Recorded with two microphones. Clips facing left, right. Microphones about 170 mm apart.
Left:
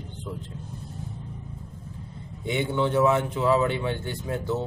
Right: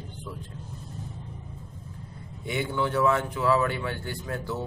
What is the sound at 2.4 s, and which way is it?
Speech, 20° left (ahead or behind).